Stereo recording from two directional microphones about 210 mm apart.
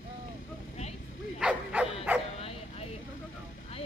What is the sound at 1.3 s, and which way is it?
Bow-wow, 5° right (ahead or behind).